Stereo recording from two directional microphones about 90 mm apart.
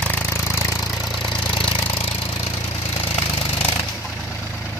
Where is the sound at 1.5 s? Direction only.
70° left (ahead or behind).